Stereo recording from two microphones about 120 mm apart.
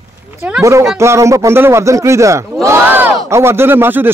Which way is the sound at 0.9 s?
25° right (ahead or behind).